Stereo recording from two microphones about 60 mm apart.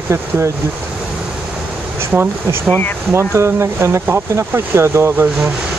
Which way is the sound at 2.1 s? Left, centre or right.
Right.